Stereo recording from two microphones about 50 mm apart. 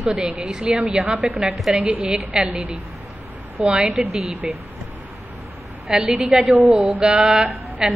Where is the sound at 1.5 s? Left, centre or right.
Centre.